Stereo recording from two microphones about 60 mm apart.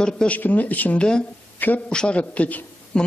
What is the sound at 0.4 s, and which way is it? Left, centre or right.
Speech, left.